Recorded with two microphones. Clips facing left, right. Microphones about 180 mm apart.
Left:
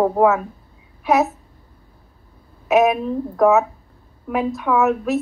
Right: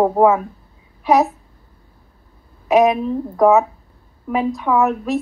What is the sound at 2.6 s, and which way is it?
A woman's voice, 5° left (ahead or behind).